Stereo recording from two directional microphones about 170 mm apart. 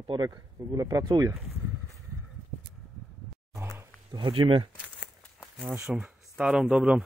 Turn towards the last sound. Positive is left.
turn(degrees=-5)  # may be behind; listen again after turning